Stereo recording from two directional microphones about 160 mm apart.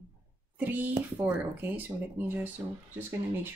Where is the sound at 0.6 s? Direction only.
10° right (ahead or behind).